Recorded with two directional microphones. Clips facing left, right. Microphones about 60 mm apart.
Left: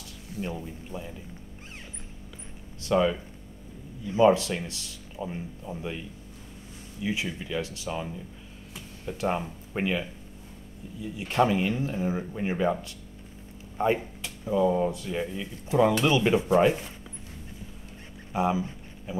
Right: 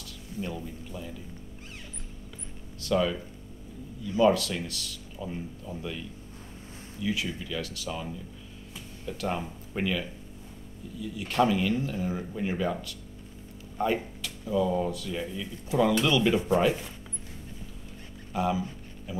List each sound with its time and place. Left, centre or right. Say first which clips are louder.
0.4 s speech: left 1 dB; left
2.8 s speech: left 3 dB; left
7.0 s speech: even; left
18.3 s speech: left 2 dB; left